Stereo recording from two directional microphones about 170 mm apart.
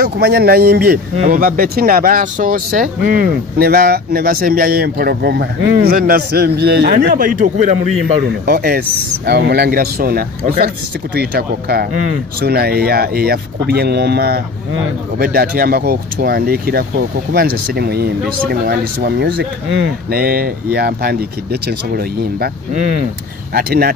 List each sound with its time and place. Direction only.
0.0 s speech: 70° right (ahead or behind); by 7.7 s 50° right (ahead or behind)
8.3 s speech: 65° right (ahead or behind)
20.1 s speech: 60° right (ahead or behind)
23.5 s speech: 65° right (ahead or behind)